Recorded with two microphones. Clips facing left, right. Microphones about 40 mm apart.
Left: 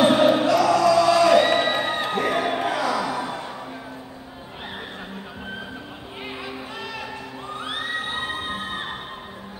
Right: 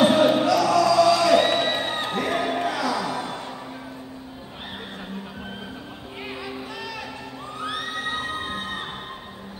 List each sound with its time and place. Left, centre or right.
0.0 s a sound: left
0.5 s music: left
1.0 s crowd: left
1.3 s crowd: centre
2.0 s music: left
2.3 s a sound: left
2.6 s music: left
3.1 s music: centre